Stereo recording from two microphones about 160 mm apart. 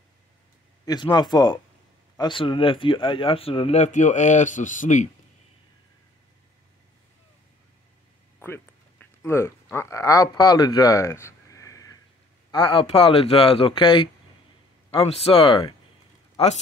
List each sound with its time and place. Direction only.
0.8 s speech: 25° left (ahead or behind); by 5.0 s 50° left (ahead or behind)
8.4 s speech: 15° left (ahead or behind); by 16.5 s 40° left (ahead or behind)